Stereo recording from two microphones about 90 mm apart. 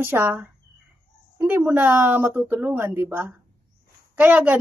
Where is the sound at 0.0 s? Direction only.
25° right (ahead or behind).